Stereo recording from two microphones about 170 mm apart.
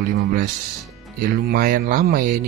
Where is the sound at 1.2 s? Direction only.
60° right (ahead or behind).